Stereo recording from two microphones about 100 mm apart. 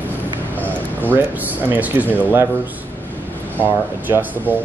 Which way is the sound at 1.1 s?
20° right (ahead or behind).